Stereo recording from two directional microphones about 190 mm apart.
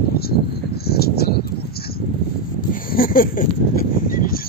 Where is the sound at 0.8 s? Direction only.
55° left (ahead or behind).